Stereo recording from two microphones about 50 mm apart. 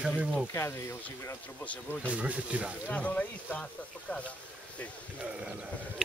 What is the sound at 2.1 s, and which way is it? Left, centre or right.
Speech, right.